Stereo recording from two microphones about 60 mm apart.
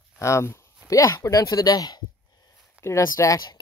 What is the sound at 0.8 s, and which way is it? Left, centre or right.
Speech, left.